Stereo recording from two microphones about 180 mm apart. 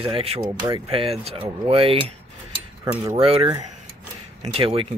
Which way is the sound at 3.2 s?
30° right (ahead or behind).